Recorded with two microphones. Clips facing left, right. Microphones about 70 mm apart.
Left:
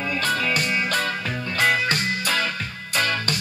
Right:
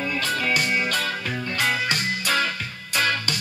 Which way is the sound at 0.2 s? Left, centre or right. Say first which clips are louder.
Left 2 dB; left.